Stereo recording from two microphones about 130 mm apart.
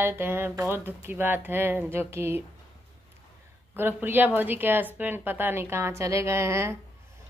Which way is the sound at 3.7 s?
15° right (ahead or behind).